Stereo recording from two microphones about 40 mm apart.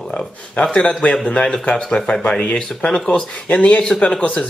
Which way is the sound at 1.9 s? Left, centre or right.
Centre.